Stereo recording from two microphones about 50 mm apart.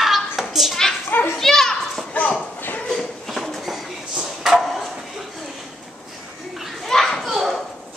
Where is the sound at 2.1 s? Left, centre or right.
Left.